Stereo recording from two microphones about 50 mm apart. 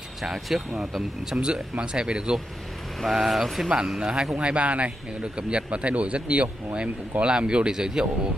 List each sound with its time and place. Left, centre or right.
0.2 s speech: centre
1.4 s speech: centre
3.0 s speech: centre
4.0 s speech: centre
4.4 s speech: right